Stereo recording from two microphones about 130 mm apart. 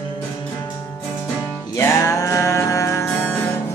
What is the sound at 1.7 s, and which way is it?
Music, 25° left (ahead or behind).